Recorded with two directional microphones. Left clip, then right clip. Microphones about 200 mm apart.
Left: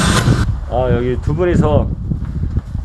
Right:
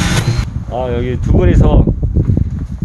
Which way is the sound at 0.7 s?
10° right (ahead or behind).